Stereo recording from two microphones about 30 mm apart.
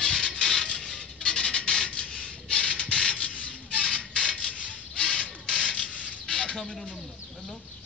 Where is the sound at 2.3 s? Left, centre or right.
Left.